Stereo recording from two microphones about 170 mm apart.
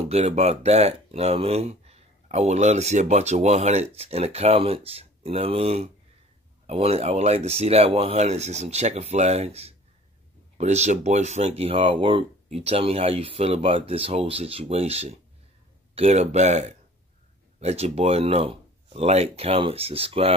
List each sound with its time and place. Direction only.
0.1 s speech: 40° right (ahead or behind)